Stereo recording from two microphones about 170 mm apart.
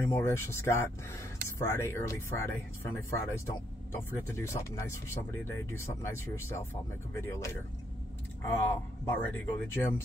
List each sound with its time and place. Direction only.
0.0 s speech: 15° left (ahead or behind)